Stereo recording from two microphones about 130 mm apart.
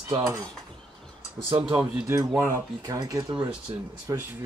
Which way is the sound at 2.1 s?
20° right (ahead or behind).